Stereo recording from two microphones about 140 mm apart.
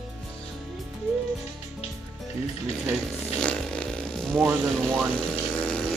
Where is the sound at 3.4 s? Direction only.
5° left (ahead or behind).